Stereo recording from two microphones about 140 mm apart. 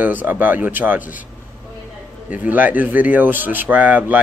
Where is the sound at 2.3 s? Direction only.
10° right (ahead or behind).